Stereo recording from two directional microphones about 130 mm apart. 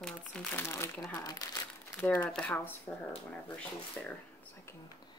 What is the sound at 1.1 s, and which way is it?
Speech, 30° left (ahead or behind).